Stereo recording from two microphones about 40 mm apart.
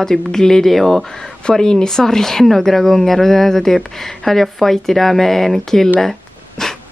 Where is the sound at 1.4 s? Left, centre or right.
Centre.